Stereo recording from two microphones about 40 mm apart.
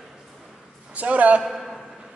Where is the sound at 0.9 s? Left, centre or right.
Right.